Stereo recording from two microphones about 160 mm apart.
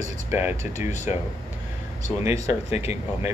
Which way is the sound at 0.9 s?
45° left (ahead or behind).